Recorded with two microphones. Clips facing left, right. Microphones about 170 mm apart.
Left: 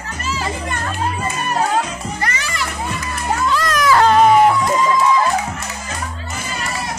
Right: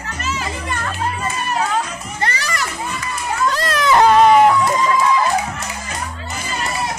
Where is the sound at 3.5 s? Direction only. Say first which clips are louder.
Left 1 dB; 30° right (ahead or behind).